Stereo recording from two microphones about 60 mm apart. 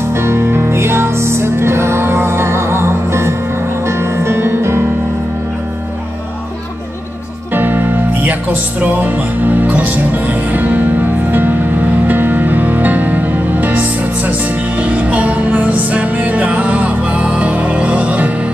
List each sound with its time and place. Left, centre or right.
0.1 s music: right
7.5 s music: right
14.8 s music: right